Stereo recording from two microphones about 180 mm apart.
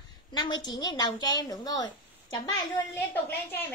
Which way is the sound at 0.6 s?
20° left (ahead or behind).